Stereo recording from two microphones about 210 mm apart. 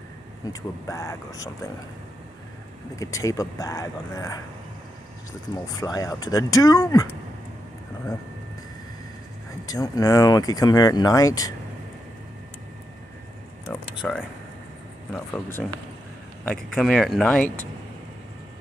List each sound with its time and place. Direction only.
0.5 s speech: 15° left (ahead or behind)
3.0 s speech: 15° left (ahead or behind)
5.8 s speech: 15° left (ahead or behind)
9.7 s speech: 15° left (ahead or behind)
13.7 s a sound: 5° left (ahead or behind)
15.1 s speech: 10° left (ahead or behind)